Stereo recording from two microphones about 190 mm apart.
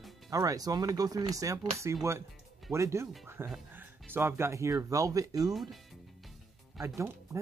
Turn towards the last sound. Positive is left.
turn(degrees=-15)  # may be behind; listen again after turning